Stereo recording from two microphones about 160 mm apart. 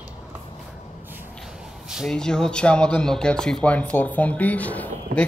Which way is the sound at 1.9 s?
Centre (ahead or behind).